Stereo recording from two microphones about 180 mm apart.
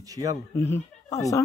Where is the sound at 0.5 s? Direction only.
15° left (ahead or behind).